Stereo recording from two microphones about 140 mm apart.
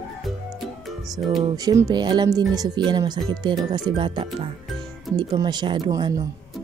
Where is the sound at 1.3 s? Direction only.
25° right (ahead or behind).